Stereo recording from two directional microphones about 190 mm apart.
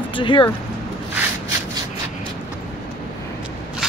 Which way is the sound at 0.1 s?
25° left (ahead or behind).